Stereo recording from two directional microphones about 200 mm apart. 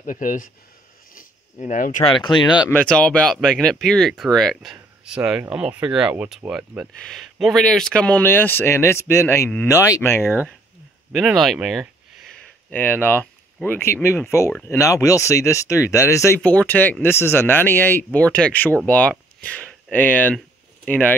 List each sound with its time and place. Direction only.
0.0 s speech: 40° left (ahead or behind)
1.1 s zipper: 40° left (ahead or behind)
2.0 s speech: 25° left (ahead or behind)
2.7 s speech: 5° left (ahead or behind)
11.1 s speech: centre (ahead or behind)
12.6 s speech: 10° left (ahead or behind)